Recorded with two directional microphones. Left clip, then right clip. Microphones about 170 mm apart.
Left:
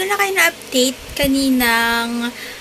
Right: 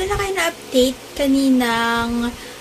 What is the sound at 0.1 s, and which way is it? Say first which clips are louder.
A woman's voice: left 5 dB; 10° right (ahead or behind).